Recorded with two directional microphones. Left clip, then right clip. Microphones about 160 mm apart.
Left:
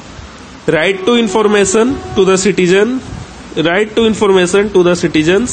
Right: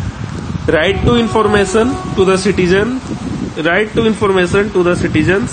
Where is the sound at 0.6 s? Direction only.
30° left (ahead or behind).